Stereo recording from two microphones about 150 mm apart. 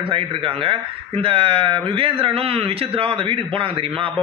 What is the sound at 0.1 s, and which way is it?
Speech, 35° right (ahead or behind).